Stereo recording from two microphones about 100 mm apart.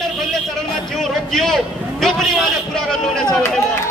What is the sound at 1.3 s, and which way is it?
A man's voice, 5° left (ahead or behind).